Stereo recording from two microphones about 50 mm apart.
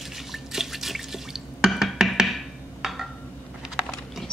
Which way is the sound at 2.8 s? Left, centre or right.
Centre.